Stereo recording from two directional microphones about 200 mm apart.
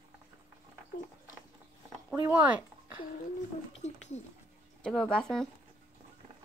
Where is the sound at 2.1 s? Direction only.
10° right (ahead or behind).